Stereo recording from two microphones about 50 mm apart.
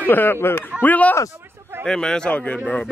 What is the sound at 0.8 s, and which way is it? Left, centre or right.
Speech, left.